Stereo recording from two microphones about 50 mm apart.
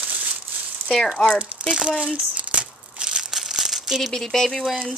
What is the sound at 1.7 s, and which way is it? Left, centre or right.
Crumpling, centre.